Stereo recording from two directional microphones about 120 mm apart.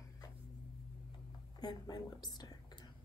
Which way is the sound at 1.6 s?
35° left (ahead or behind).